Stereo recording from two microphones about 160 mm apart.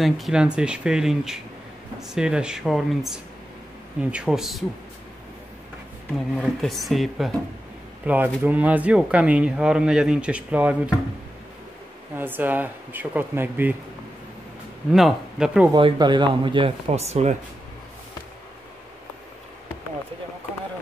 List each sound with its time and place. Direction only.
0.0 s speech: 5° right (ahead or behind)
6.3 s speech: centre (ahead or behind)
12.2 s speech: 10° right (ahead or behind)
14.9 s speech: 5° right (ahead or behind)
15.7 s speech: 30° right (ahead or behind); by 17.4 s 45° right (ahead or behind)